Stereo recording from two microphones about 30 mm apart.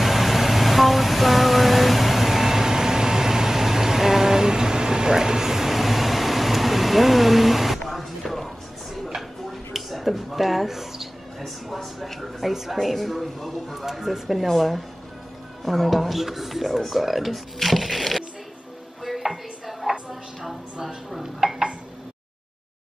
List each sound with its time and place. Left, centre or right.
0.0 s vehicle: centre
7.8 s music: centre
9.7 s mouse: centre
12.8 s speech: centre
19.9 s music: centre
21.4 s a sound: right